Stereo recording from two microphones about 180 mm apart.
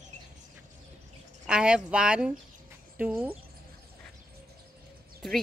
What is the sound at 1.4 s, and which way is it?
Speech, 5° right (ahead or behind).